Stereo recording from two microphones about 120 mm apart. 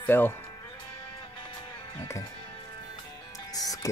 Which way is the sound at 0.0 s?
15° left (ahead or behind).